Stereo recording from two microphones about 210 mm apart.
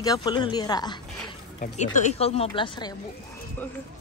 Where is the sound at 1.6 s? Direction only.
35° left (ahead or behind).